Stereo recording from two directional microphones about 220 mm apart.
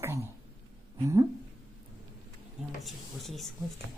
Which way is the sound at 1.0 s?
15° right (ahead or behind).